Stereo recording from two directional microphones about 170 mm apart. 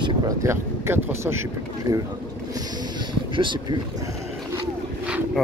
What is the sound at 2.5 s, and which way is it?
Boat, 25° right (ahead or behind).